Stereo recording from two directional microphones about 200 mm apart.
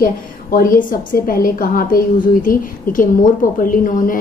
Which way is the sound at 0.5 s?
45° left (ahead or behind).